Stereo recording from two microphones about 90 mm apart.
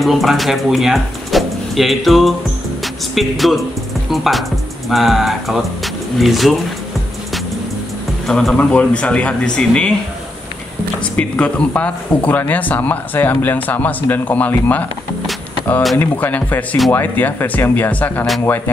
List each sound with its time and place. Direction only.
0.0 s speech: centre (ahead or behind)
8.3 s speech: 5° left (ahead or behind)
11.1 s speech: 15° left (ahead or behind)
16.0 s speech: 20° left (ahead or behind)